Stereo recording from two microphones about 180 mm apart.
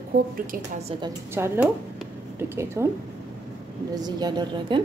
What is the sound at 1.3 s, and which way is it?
Speech, 15° right (ahead or behind).